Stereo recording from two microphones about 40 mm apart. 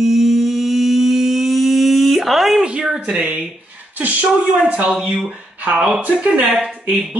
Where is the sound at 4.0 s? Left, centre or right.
Right.